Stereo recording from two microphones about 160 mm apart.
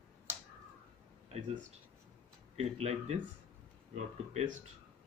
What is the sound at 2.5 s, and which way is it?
Speech, 40° right (ahead or behind).